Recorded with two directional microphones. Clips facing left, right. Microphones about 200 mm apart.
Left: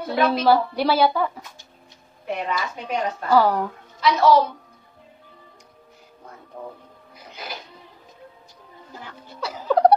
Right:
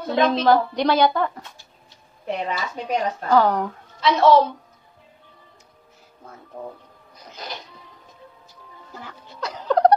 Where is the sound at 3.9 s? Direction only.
25° right (ahead or behind).